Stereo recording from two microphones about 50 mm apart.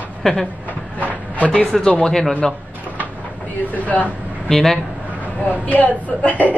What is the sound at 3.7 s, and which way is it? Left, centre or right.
Speech, left.